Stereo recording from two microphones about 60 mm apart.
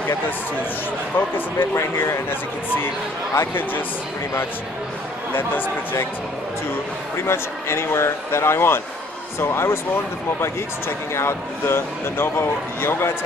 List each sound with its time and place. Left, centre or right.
1.1 s speech: left
1.8 s speech: left
5.3 s speech: left
7.2 s speech: left